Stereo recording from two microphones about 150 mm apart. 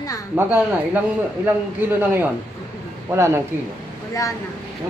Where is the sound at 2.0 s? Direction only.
15° right (ahead or behind).